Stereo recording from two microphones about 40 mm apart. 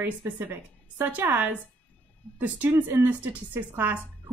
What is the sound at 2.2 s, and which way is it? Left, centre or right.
Speech, left.